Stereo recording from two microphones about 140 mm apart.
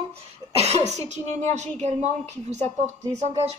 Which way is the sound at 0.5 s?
50° right (ahead or behind).